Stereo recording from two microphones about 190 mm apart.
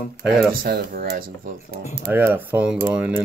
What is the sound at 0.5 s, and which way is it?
Speech, 50° right (ahead or behind).